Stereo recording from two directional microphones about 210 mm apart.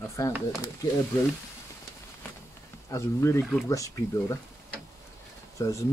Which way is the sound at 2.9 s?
15° left (ahead or behind).